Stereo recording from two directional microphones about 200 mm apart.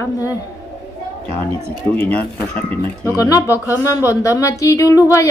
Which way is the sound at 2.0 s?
10° left (ahead or behind).